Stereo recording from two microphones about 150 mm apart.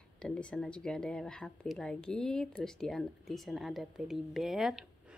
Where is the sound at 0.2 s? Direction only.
5° left (ahead or behind).